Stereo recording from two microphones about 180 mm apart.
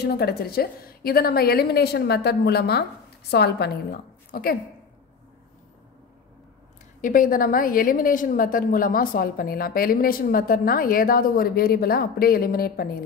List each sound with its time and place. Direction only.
0.0 s a woman's voice: 60° left (ahead or behind)
7.0 s a woman's voice: 50° left (ahead or behind)